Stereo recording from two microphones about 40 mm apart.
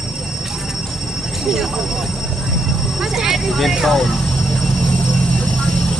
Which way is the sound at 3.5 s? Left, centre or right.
Centre.